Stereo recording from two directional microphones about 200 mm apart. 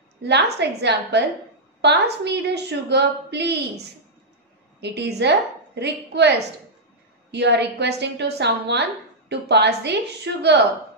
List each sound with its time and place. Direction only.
0.2 s a woman's voice: 55° right (ahead or behind)